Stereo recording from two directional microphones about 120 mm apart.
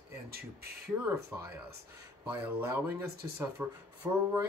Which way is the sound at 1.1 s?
25° right (ahead or behind).